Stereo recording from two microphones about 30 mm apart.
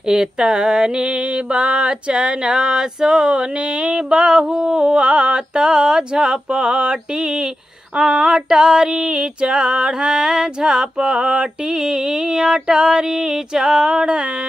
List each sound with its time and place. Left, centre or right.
0.0 s mantra: right
7.9 s female singing: right